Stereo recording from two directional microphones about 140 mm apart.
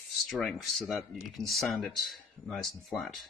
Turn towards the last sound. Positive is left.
turn(degrees=0)  # may be behind; listen again after turning